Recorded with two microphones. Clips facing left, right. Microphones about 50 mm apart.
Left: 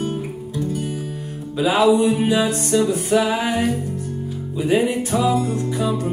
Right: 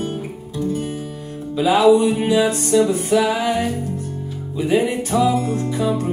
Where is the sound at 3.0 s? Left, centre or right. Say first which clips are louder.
Right 1 dB; left.